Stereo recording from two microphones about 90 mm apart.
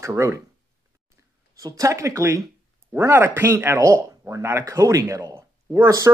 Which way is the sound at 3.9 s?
40° right (ahead or behind).